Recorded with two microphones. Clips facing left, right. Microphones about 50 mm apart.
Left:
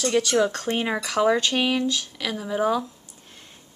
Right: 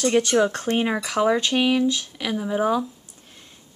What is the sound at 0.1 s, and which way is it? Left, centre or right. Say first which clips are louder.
Speech: even; right.